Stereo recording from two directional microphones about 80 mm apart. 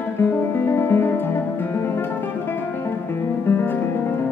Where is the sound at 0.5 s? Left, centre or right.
Left.